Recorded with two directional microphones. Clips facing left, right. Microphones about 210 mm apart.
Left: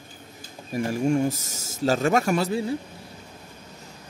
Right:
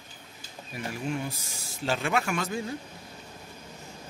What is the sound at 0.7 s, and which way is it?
Speech, 45° left (ahead or behind).